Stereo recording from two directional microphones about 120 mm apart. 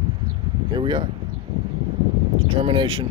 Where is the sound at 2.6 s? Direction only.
45° right (ahead or behind).